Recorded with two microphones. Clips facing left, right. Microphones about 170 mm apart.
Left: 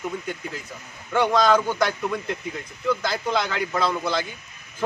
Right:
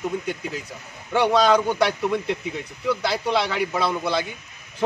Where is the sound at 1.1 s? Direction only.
15° right (ahead or behind).